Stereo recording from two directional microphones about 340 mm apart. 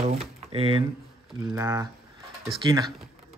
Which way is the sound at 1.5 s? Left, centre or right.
Centre.